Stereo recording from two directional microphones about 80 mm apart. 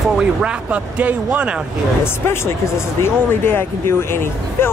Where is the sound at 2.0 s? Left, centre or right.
Left.